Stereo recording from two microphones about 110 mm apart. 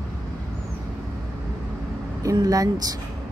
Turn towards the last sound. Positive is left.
turn(degrees=-35)  # may be behind; listen again after turning